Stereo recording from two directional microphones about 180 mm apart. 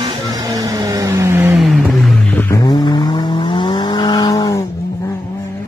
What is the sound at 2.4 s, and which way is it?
Vehicle, 20° left (ahead or behind).